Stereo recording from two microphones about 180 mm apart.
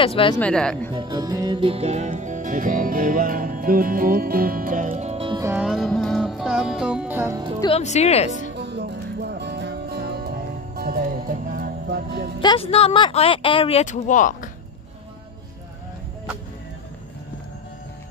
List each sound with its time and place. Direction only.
0.0 s speech: 30° left (ahead or behind)
0.4 s speech: 5° left (ahead or behind)
0.9 s music: 25° right (ahead or behind)
5.4 s music: 10° right (ahead or behind)
5.7 s music: centre (ahead or behind)
7.6 s speech: 35° left (ahead or behind)
8.4 s music: 75° right (ahead or behind)
12.4 s speech: 30° left (ahead or behind); by 14.5 s 45° left (ahead or behind)